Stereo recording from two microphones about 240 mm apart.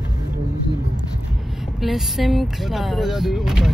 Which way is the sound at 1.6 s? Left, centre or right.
Centre.